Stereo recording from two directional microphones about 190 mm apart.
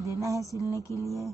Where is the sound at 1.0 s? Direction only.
15° right (ahead or behind).